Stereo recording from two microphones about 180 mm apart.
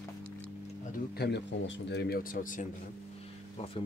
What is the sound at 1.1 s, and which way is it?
Speech, 70° left (ahead or behind).